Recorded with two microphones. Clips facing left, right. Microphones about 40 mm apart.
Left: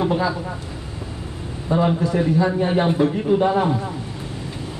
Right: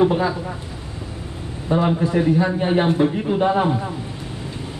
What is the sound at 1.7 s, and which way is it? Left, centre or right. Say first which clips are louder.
A man's voice: even; centre.